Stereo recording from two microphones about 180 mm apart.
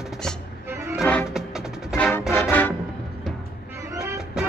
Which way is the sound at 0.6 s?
15° right (ahead or behind).